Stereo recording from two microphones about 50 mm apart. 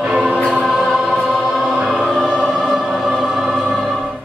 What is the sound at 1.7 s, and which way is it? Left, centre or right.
Choir, centre.